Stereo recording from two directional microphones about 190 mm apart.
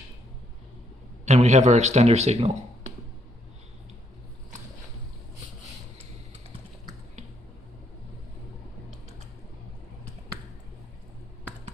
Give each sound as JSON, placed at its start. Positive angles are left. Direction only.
{"t": 1.2, "sound": "a man's voice", "side_deg": -35}